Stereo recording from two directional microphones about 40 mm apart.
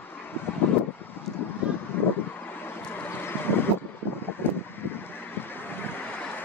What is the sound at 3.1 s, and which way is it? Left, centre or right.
Vehicle, left.